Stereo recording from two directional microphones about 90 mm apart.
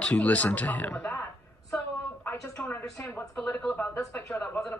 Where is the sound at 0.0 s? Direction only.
10° left (ahead or behind).